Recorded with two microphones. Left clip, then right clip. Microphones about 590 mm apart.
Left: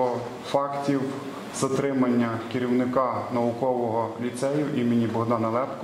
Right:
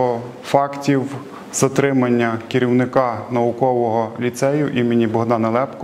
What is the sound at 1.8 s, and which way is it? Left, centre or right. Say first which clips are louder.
A man's voice: right 8 dB; right.